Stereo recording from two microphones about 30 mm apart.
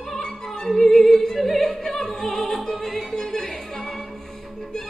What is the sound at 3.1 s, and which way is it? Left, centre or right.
Music, centre.